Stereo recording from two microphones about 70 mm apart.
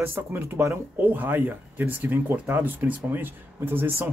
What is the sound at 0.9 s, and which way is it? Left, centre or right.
Speech, right.